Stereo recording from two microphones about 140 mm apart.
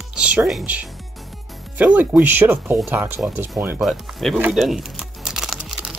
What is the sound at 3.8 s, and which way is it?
Speech, centre (ahead or behind).